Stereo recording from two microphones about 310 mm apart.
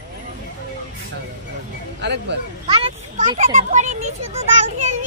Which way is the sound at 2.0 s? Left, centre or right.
Right.